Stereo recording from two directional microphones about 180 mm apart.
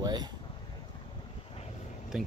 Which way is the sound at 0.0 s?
20° right (ahead or behind).